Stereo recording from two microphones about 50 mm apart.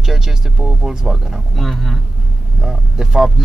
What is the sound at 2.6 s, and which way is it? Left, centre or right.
Speech, centre.